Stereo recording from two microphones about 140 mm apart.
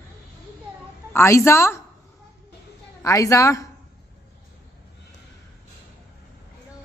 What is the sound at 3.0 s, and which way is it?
Speech, 20° left (ahead or behind).